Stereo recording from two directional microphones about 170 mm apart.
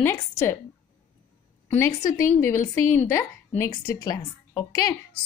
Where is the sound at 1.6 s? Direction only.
15° left (ahead or behind).